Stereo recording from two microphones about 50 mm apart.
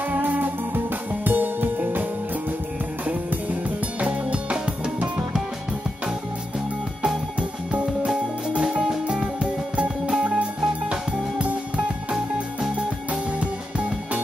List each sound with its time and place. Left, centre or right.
0.1 s music: right
4.0 s music: right
7.3 s music: right